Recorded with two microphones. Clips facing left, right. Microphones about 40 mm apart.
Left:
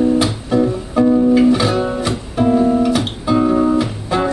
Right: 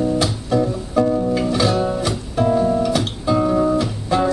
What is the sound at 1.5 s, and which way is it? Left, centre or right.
Guitar, centre.